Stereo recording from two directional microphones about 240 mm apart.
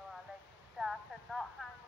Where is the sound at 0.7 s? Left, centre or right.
Centre.